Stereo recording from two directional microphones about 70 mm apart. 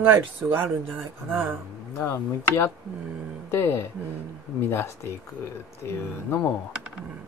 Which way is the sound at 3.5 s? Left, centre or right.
Left.